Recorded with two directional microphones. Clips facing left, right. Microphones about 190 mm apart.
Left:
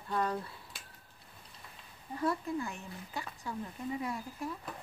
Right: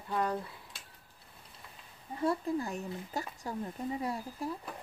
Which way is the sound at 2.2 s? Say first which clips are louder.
Right 2 dB; 30° right (ahead or behind).